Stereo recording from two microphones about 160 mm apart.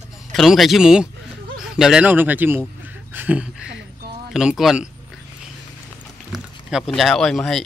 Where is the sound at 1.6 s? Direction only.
5° right (ahead or behind).